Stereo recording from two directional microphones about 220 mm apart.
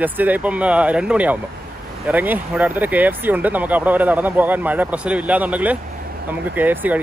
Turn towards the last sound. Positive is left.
turn(degrees=-10)  # may be behind; listen again after turning